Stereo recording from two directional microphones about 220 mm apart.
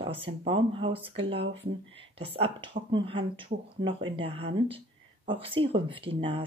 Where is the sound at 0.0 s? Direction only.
25° right (ahead or behind).